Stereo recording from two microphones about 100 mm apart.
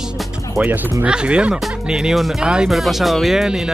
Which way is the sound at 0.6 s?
20° right (ahead or behind).